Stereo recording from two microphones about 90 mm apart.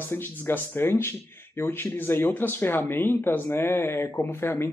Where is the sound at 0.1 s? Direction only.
25° left (ahead or behind).